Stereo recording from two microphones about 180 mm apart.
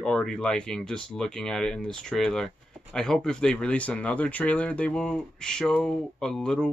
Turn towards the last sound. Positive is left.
turn(degrees=5)  # may be behind; listen again after turning